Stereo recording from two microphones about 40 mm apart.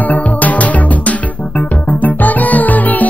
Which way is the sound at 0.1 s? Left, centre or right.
Left.